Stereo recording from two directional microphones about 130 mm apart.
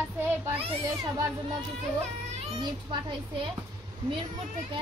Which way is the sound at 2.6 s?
35° right (ahead or behind).